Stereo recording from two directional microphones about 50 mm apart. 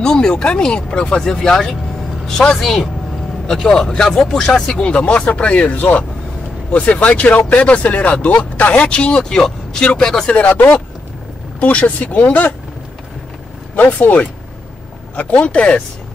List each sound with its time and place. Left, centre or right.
0.0 s speech: centre
10.5 s speech: left
11.6 s speech: left
13.9 s speech: left